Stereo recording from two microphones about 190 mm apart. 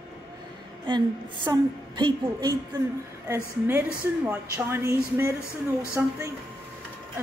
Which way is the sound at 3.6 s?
10° right (ahead or behind).